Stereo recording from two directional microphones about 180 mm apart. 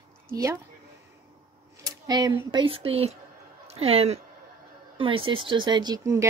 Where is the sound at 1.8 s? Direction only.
20° right (ahead or behind).